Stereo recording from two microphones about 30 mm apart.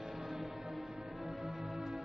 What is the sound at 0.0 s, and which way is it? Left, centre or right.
Music, centre.